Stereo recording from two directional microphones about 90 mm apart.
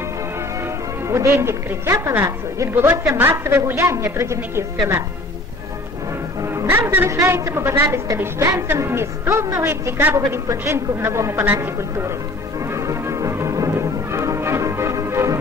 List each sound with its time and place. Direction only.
0.6 s a woman's voice: 30° right (ahead or behind)
6.4 s music: 30° right (ahead or behind)
7.1 s a woman's voice: 30° right (ahead or behind)
12.5 s music: 35° right (ahead or behind)